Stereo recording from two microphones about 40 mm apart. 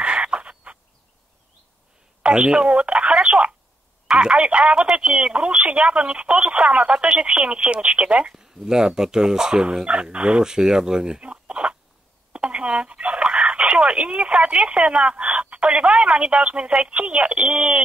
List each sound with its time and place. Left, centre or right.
0.0 s a sound: right
2.2 s speech: right
12.3 s telephone dialing: right
15.0 s speech: right